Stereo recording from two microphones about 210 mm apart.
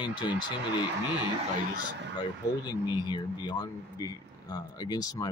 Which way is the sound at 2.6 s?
20° left (ahead or behind).